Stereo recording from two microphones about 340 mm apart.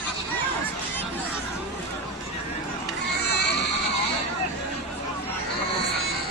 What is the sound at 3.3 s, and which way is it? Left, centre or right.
Children shouting, left.